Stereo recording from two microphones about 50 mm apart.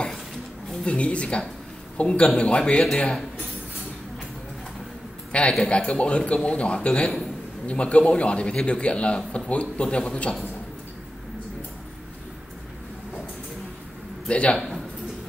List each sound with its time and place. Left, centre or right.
0.7 s a man's voice: left
5.6 s a man's voice: left
14.2 s a man's voice: left